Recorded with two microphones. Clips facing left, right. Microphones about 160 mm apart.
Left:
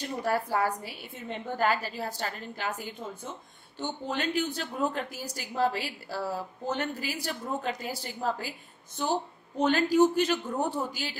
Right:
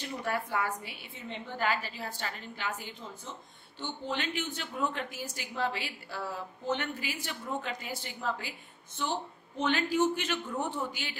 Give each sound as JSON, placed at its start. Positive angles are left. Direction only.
{"t": 0.2, "sound": "speech", "side_deg": 35}